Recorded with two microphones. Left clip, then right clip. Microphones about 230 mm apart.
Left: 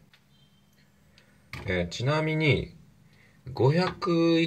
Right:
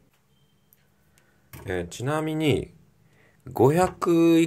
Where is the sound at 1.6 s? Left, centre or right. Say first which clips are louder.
Even; centre.